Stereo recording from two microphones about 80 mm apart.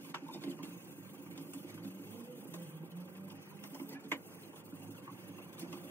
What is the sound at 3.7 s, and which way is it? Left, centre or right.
Sewing machine, left.